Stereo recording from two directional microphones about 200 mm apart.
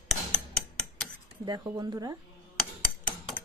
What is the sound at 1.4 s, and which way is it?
Speech, 20° right (ahead or behind).